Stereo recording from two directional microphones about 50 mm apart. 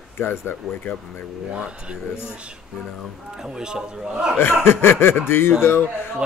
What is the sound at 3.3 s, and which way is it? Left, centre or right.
A man's voice, centre.